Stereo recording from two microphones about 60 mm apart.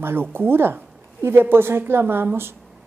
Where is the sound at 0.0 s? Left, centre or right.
Right.